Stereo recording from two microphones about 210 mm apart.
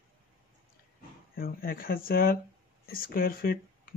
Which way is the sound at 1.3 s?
45° left (ahead or behind).